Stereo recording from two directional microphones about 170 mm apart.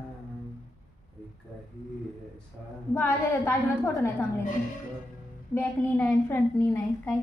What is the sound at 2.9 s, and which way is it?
A woman's voice, 10° left (ahead or behind).